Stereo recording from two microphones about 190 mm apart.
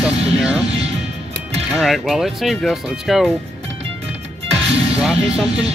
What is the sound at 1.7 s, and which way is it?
Speech, centre (ahead or behind).